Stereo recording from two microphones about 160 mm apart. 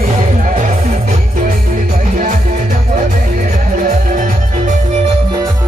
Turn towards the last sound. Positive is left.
turn(degrees=-55)  # may be behind; listen again after turning